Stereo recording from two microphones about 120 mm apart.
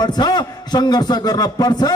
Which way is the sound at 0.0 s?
35° left (ahead or behind).